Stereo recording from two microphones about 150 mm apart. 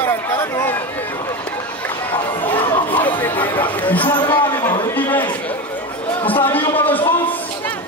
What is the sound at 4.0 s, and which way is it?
Speech, 30° left (ahead or behind).